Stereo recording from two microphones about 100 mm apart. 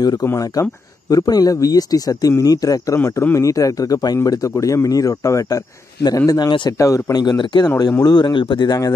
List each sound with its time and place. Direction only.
0.0 s a man's voice: 40° left (ahead or behind)
3.0 s a man's voice: 25° left (ahead or behind)